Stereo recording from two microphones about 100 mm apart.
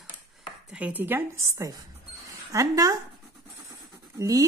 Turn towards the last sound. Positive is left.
turn(degrees=-35)  # may be behind; listen again after turning